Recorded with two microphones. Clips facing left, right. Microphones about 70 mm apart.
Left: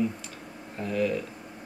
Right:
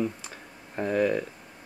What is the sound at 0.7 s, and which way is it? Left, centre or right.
Speech, right.